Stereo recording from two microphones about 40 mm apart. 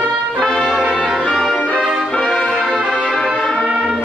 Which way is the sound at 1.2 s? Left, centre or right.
Centre.